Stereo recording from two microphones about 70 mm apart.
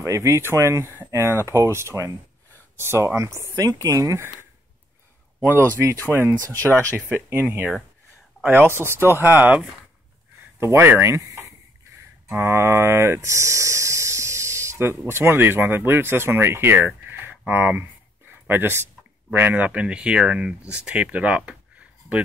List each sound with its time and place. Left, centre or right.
0.0 s speech: right
0.9 s speech: right
3.6 s speech: right
6.0 s speech: right
10.6 s speech: right
11.2 s a sound: right
12.4 s speech: right; by 21.4 s centre
21.5 s a sound: centre